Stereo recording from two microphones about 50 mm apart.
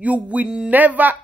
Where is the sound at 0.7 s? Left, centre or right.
Right.